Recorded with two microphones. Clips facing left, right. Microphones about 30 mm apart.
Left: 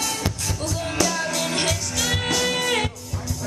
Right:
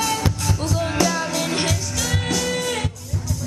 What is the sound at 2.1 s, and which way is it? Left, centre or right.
Music, centre.